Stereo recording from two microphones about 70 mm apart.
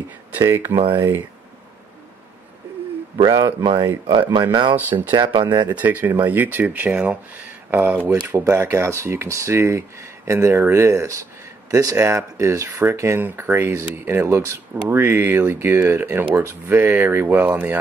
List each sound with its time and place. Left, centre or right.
0.3 s speech: right
3.2 s speech: right
4.3 s speech: right
4.7 s speech: right
5.1 s speech: right
5.7 s speech: right
8.5 s speech: right